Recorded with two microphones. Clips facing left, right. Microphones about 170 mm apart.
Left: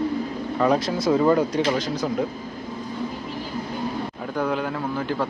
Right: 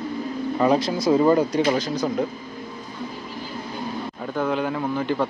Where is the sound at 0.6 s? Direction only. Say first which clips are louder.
Right 1 dB; centre (ahead or behind).